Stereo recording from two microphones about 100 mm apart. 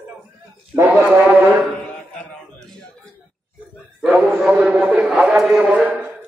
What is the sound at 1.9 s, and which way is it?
Mantra, 10° left (ahead or behind).